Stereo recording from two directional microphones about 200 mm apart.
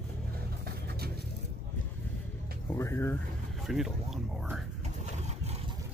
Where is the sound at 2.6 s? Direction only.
15° left (ahead or behind).